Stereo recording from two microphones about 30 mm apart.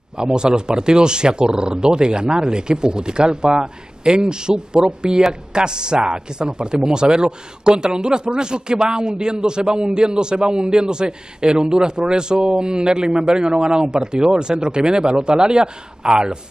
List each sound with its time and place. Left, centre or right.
0.2 s a man's voice: right